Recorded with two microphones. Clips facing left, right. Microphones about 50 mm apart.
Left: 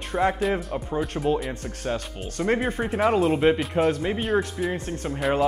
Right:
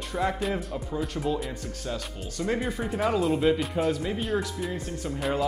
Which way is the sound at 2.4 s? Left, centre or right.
Left.